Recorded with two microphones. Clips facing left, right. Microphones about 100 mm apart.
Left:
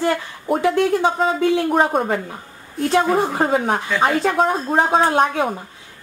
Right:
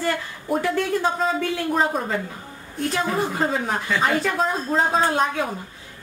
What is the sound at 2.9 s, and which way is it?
Speech, 30° left (ahead or behind).